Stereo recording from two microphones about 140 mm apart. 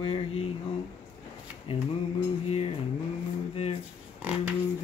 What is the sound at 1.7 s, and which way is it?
Mantra, 40° left (ahead or behind).